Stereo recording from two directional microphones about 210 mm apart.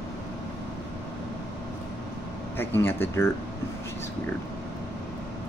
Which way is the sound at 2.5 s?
10° left (ahead or behind).